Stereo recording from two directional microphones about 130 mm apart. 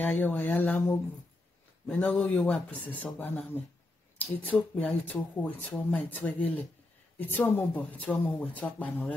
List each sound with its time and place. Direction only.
0.0 s speech: 15° left (ahead or behind)